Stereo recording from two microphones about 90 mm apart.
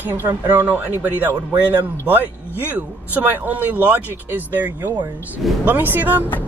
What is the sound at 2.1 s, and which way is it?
Speech, 20° right (ahead or behind).